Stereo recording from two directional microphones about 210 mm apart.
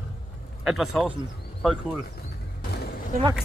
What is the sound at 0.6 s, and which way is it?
Speech, centre (ahead or behind).